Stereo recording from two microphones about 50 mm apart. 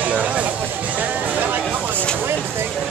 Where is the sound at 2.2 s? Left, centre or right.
Right.